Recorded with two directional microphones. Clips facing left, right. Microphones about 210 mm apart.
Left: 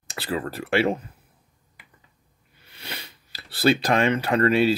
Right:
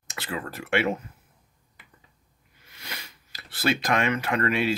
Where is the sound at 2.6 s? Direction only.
30° left (ahead or behind).